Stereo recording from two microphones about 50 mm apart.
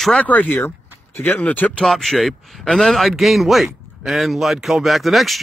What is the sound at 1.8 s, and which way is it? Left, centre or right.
Speech, centre.